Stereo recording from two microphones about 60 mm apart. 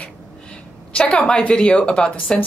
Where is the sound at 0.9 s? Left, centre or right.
Centre.